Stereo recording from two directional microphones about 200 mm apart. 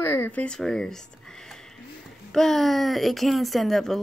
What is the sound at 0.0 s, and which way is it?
Speech, 10° left (ahead or behind).